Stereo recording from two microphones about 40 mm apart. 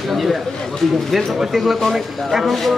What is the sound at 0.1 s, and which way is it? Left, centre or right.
Speech, centre.